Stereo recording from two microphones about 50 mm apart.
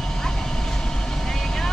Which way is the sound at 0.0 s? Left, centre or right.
Centre.